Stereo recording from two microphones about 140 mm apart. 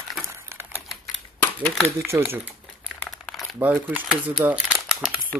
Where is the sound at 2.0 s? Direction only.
15° right (ahead or behind).